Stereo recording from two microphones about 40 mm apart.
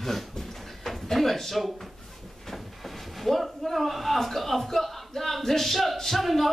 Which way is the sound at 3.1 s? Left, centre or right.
Centre.